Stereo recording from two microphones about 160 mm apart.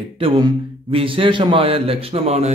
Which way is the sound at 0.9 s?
35° right (ahead or behind).